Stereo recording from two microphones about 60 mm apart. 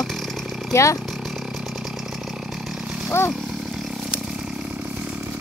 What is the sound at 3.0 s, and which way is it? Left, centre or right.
Speech, left.